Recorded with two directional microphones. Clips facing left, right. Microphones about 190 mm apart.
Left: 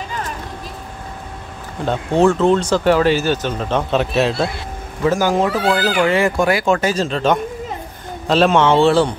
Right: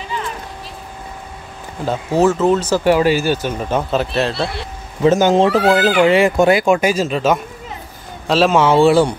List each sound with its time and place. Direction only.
0.1 s a sound: 45° left (ahead or behind)
1.9 s speech: 5° right (ahead or behind)
5.0 s speech: 20° right (ahead or behind)